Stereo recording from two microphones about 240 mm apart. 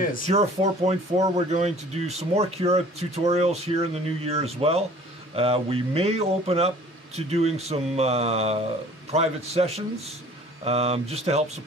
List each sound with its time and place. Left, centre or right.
0.3 s speech: right